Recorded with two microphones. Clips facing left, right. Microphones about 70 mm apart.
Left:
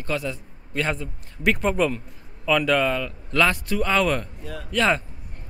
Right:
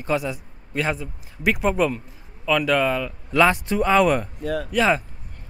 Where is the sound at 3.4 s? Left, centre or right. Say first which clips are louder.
Right 4 dB; right.